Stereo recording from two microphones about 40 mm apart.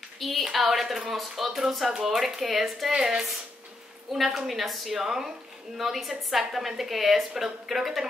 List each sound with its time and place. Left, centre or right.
0.2 s speech: centre
2.9 s a woman's voice: centre
4.1 s speech: centre